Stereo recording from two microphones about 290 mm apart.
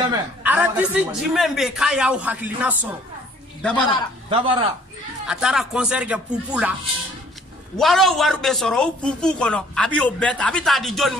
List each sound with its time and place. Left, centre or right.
0.1 s a woman's voice: centre
4.3 s speech: centre
5.2 s a woman's voice: centre
7.7 s a woman's voice: centre